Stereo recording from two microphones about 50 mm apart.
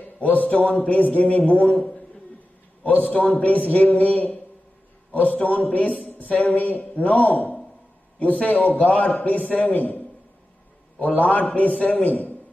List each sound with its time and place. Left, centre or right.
0.2 s a man's voice: left